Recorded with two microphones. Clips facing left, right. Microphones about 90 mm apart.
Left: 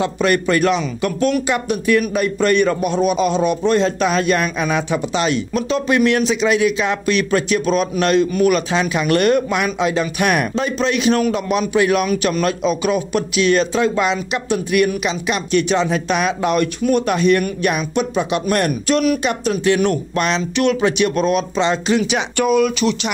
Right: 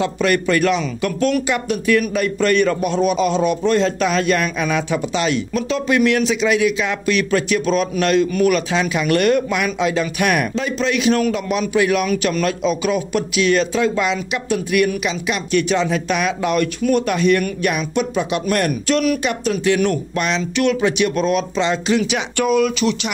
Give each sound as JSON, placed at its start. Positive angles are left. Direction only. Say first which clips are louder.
{"t": 0.0, "sound": "speech", "louder": "left 1 dB", "side_deg": 25}